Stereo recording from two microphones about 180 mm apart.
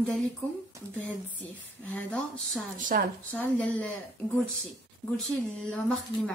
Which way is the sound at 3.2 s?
10° left (ahead or behind).